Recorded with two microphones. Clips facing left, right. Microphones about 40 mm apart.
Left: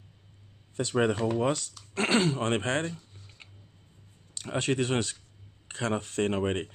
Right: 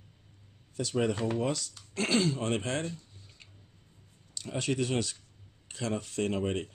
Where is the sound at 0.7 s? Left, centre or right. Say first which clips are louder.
Left 3 dB; left.